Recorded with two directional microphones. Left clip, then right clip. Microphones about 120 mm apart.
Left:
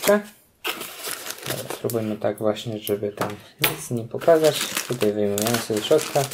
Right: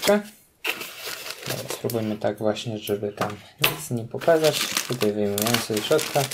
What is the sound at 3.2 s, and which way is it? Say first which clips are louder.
Speech: right 1 dB; 25° left (ahead or behind).